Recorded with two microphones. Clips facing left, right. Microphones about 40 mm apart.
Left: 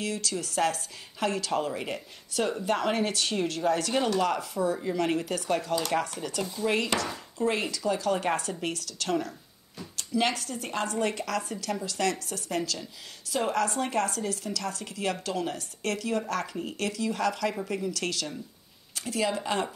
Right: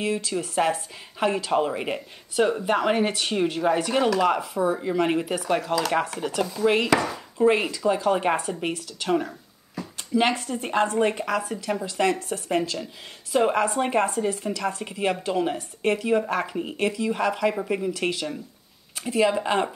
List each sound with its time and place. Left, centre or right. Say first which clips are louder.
0.0 s speech: right 5 dB; right